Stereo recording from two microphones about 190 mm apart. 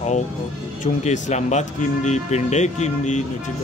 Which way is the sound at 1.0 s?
35° left (ahead or behind).